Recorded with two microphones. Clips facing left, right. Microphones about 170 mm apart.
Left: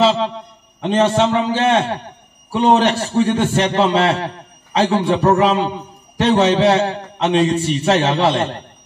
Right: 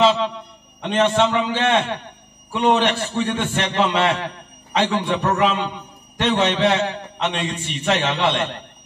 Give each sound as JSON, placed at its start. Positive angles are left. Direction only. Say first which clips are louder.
{"t": 0.0, "sound": "a man's voice", "louder": "left 2 dB", "side_deg": 35}